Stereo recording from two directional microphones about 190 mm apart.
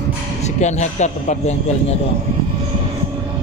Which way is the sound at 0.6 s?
40° left (ahead or behind).